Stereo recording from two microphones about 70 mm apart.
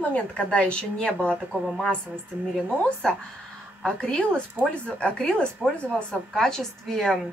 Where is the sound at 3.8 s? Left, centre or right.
Centre.